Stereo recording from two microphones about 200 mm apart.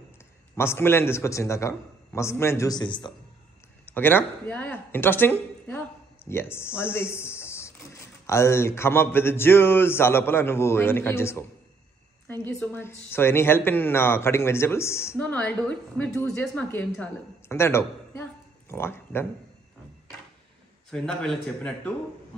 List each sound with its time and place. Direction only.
0.6 s speech: 10° left (ahead or behind)
3.8 s speech: 10° left (ahead or behind)
12.4 s a woman's voice: 10° left (ahead or behind)
20.9 s a man's voice: 5° left (ahead or behind)